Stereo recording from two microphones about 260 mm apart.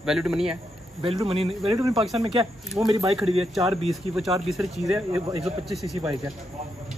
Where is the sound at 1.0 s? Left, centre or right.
Right.